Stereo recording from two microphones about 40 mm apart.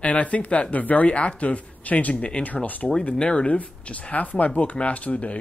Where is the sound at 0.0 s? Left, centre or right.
Left.